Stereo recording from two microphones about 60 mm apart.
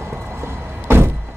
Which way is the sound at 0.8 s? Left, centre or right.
Right.